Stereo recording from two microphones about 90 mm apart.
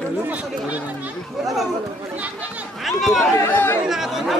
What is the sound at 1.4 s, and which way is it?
Speech, 5° right (ahead or behind).